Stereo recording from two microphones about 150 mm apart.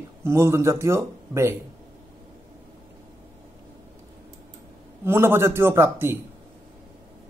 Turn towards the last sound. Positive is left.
turn(degrees=-15)  # may be behind; listen again after turning